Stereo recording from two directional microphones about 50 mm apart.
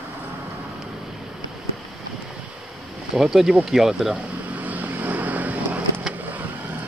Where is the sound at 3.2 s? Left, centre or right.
Centre.